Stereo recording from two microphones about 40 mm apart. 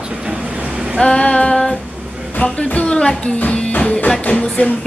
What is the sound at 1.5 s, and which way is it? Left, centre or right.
Speech, centre.